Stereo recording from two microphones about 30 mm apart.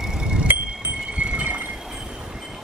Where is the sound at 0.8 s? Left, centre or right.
Right.